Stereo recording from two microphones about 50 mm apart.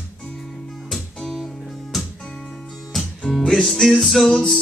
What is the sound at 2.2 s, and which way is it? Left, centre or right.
Music, centre.